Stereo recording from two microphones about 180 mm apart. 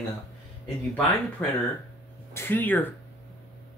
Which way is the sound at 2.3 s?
15° left (ahead or behind).